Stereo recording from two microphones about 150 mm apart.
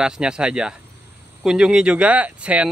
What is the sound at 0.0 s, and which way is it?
Speech, 5° right (ahead or behind).